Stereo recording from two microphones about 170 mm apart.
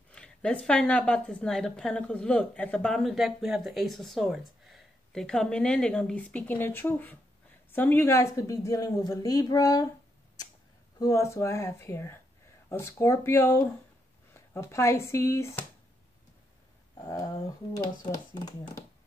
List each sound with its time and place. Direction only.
0.1 s a woman's voice: 5° left (ahead or behind)
11.0 s speech: 20° left (ahead or behind)
16.9 s speech: 20° left (ahead or behind)